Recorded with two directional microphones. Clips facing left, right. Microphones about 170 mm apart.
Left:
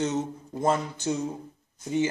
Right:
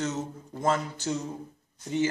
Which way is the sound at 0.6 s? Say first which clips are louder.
Left 2 dB; 20° left (ahead or behind).